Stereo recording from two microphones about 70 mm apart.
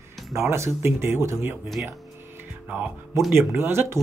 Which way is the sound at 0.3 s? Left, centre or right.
Right.